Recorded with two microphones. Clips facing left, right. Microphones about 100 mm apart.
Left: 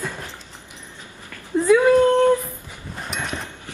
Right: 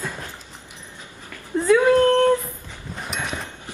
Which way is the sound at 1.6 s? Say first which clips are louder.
Left 1 dB; 10° left (ahead or behind).